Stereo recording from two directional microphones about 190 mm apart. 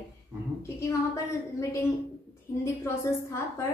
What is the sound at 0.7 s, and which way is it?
A woman's voice, 15° left (ahead or behind).